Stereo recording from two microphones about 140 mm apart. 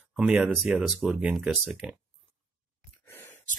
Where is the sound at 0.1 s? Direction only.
10° right (ahead or behind).